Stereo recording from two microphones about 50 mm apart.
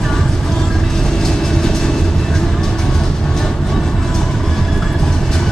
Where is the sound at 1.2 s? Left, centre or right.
Centre.